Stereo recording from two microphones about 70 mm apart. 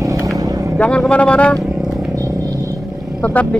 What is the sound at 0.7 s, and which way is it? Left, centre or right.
Speech, centre.